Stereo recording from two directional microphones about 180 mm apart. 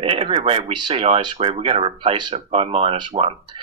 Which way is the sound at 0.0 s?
30° right (ahead or behind).